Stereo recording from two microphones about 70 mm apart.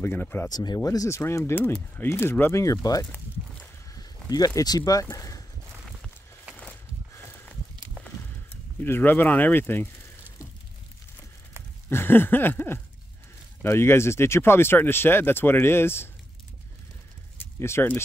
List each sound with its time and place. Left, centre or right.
0.0 s speech: left
0.5 s speech: left
0.7 s speech: left
1.4 s speech: left
2.6 s speech: left
4.6 s speech: left
8.8 s speech: left
11.9 s speech: left
17.6 s speech: left